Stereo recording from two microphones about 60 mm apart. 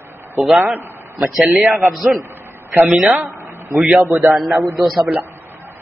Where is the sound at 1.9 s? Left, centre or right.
Centre.